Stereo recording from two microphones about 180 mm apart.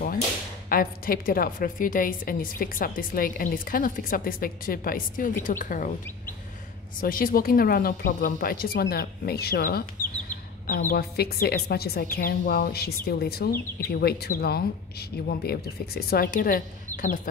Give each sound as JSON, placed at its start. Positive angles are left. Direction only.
{"t": 0.7, "sound": "a woman's voice", "side_deg": 55}
{"t": 7.0, "sound": "a woman's voice", "side_deg": 50}